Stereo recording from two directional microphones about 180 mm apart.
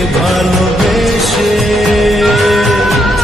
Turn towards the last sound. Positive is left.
turn(degrees=0)  # may be behind; listen again after turning